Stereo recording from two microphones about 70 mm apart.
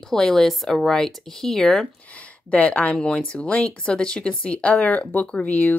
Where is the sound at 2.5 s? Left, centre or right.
Left.